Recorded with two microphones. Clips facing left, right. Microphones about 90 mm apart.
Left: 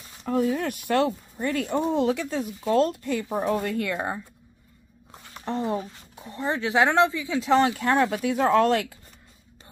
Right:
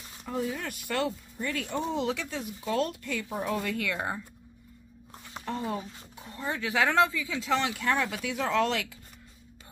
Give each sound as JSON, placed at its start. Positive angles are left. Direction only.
{"t": 0.2, "sound": "speech", "side_deg": 55}
{"t": 5.4, "sound": "speech", "side_deg": 30}